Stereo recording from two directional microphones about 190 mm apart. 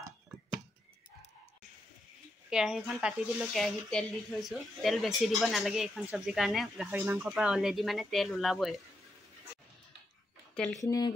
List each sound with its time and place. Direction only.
2.5 s speech: 5° right (ahead or behind)
10.5 s a sound: 5° left (ahead or behind)
10.8 s speech: 20° left (ahead or behind)